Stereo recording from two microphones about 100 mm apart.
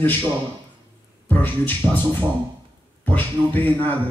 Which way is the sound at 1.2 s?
15° left (ahead or behind).